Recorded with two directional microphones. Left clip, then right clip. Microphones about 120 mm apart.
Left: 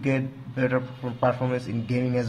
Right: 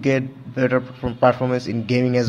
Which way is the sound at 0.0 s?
30° right (ahead or behind).